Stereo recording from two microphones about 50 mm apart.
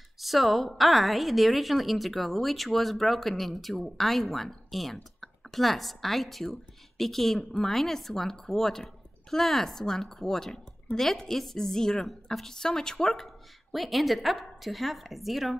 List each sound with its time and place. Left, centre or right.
0.2 s a woman's voice: centre